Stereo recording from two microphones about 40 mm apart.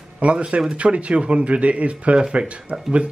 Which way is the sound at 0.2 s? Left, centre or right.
Right.